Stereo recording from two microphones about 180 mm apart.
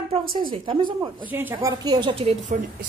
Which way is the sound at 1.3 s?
10° right (ahead or behind).